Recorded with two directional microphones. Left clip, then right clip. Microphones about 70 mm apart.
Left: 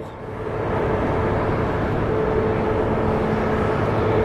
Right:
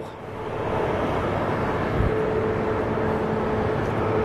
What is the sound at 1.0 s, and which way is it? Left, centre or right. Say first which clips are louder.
Vehicle: left 3 dB; right.